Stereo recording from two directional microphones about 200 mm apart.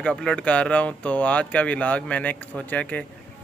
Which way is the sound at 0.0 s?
5° left (ahead or behind).